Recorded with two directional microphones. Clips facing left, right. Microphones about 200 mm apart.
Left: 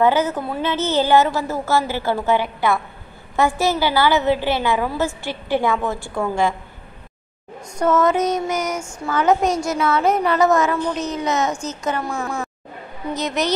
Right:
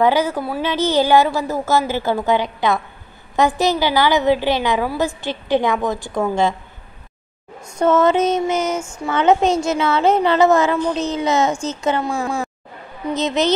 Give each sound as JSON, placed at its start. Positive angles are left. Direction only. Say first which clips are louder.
{"t": 0.0, "sound": "a woman's voice", "louder": "right 1 dB", "side_deg": -10}
{"t": 7.8, "sound": "a woman's voice", "louder": "right 2 dB", "side_deg": -25}